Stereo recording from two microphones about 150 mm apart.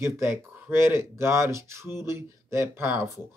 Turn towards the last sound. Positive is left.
turn(degrees=-15)  # may be behind; listen again after turning